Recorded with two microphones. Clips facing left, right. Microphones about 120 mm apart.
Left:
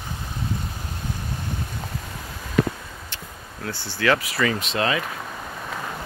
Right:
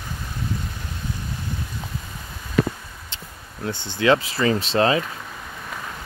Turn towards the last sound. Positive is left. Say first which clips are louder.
# right 5 dB
turn(degrees=-30)  # may be behind; listen again after turning